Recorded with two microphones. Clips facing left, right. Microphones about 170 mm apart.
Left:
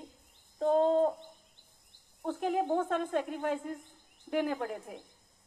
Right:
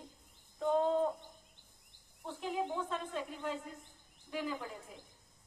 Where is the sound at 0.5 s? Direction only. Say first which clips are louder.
Left 5 dB; 40° left (ahead or behind).